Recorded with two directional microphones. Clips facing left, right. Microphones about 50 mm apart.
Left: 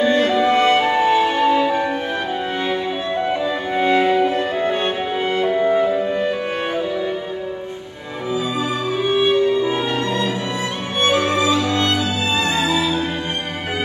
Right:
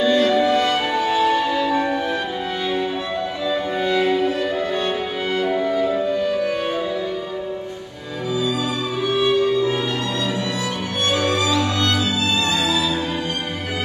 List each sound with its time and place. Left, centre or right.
0.0 s music: left
8.5 s music: left